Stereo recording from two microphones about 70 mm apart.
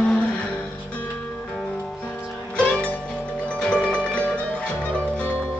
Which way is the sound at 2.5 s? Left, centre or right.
Centre.